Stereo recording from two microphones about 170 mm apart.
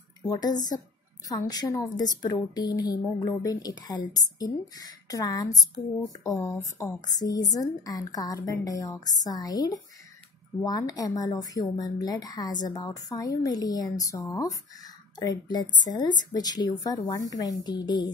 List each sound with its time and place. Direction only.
0.2 s speech: 25° left (ahead or behind)